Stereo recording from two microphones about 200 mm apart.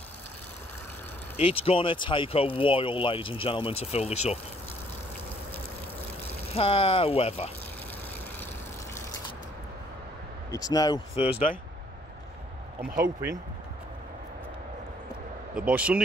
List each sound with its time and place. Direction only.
1.3 s speech: 30° left (ahead or behind)
6.5 s speech: 30° left (ahead or behind)
10.5 s speech: 20° left (ahead or behind)
15.5 s speech: 5° right (ahead or behind)